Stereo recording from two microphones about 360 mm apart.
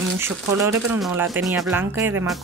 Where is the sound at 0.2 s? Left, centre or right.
Centre.